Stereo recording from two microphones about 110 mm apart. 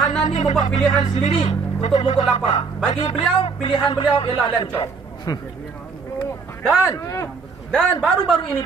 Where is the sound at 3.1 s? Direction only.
60° left (ahead or behind).